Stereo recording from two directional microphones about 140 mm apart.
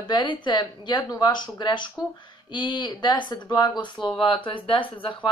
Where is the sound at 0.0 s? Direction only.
35° left (ahead or behind).